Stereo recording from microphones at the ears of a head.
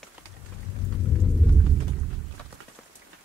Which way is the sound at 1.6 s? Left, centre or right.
Right.